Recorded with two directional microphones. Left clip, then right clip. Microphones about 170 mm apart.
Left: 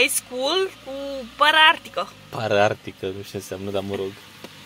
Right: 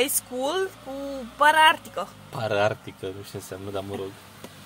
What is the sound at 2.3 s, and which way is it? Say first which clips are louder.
Speech: left 4 dB; 35° left (ahead or behind).